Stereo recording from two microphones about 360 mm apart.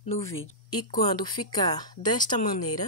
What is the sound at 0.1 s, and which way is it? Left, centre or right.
A woman's voice, centre.